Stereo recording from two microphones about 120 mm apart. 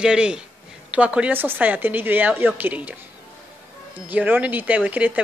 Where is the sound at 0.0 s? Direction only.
10° right (ahead or behind).